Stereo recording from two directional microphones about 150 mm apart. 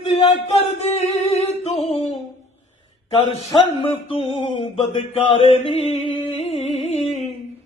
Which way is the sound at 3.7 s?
40° left (ahead or behind).